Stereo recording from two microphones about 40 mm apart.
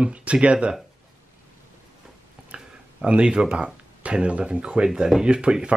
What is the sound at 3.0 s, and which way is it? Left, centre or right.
Speech, right.